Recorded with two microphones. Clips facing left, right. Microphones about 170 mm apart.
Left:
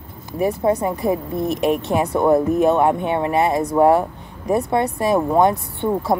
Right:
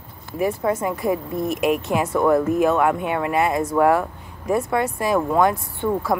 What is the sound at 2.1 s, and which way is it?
A woman's voice, 20° left (ahead or behind).